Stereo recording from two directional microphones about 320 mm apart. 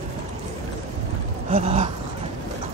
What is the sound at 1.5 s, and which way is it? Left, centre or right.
Dog, right.